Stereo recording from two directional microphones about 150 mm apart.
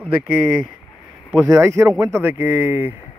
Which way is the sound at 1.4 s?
20° right (ahead or behind).